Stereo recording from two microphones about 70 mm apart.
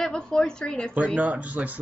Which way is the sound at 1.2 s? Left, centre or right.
Right.